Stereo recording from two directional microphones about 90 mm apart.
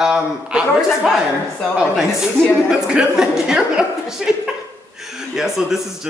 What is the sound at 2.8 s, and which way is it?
A woman's voice, 5° right (ahead or behind).